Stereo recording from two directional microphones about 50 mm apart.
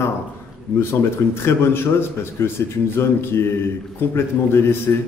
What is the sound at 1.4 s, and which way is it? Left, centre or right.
A man's voice, left.